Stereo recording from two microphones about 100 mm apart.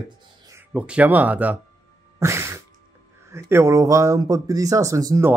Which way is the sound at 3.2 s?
25° right (ahead or behind).